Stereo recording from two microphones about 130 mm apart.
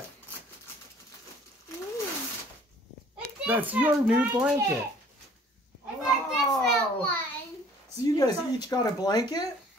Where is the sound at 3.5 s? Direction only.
15° right (ahead or behind).